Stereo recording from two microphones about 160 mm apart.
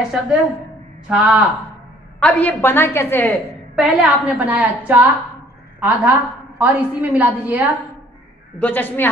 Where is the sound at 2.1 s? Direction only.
5° left (ahead or behind).